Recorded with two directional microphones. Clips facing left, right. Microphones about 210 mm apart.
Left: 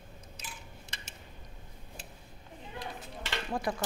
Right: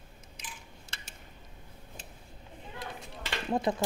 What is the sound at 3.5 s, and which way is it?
Speech, 25° right (ahead or behind).